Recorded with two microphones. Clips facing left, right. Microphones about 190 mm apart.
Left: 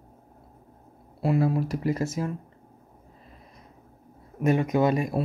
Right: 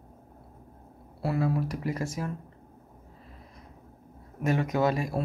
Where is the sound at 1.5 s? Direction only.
25° left (ahead or behind).